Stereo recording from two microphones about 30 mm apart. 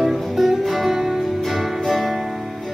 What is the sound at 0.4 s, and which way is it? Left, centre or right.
Music, centre.